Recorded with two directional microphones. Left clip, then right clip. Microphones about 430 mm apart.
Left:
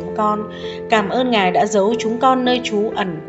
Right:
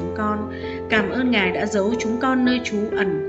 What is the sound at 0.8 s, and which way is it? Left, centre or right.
A woman's voice, centre.